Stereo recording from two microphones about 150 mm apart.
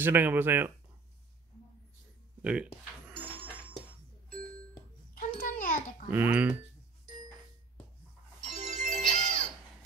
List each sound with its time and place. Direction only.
0.0 s speech: 15° right (ahead or behind)
2.4 s speech: 10° right (ahead or behind)
5.1 s a sound: 65° left (ahead or behind)
6.0 s speech: 15° right (ahead or behind)
8.5 s music: 55° right (ahead or behind)